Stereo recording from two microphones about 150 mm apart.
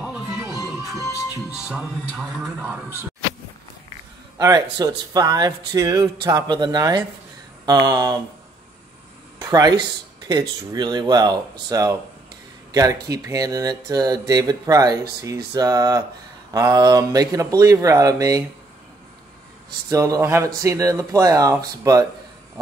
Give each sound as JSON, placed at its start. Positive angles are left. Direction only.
{"t": 1.5, "sound": "speech", "side_deg": -5}
{"t": 4.4, "sound": "speech", "side_deg": -25}
{"t": 9.4, "sound": "speech", "side_deg": -25}
{"t": 19.9, "sound": "speech", "side_deg": -20}